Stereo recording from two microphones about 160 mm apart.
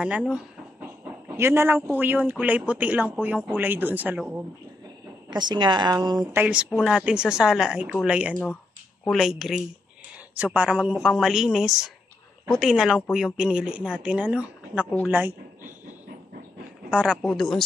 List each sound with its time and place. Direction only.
0.0 s a woman's voice: 5° right (ahead or behind)
1.3 s a woman's voice: 15° right (ahead or behind)
5.3 s speech: 25° right (ahead or behind)
6.3 s a woman's voice: 10° right (ahead or behind)
8.3 s a woman's voice: 10° left (ahead or behind); by 15.3 s 5° right (ahead or behind)
16.9 s a woman's voice: 5° right (ahead or behind)